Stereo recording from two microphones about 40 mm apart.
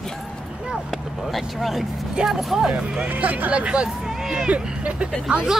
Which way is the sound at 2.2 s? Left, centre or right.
Right.